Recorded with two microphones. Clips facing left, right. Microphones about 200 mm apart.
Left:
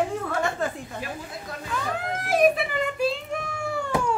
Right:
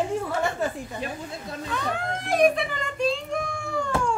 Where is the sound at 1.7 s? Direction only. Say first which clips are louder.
Even; 5° left (ahead or behind).